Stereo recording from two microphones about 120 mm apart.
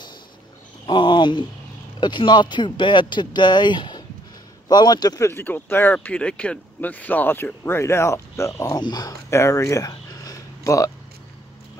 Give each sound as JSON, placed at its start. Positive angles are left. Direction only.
{"t": 0.8, "sound": "speech", "side_deg": 40}
{"t": 5.3, "sound": "speech", "side_deg": 15}
{"t": 8.7, "sound": "speech", "side_deg": 35}
{"t": 9.3, "sound": "a sound", "side_deg": 25}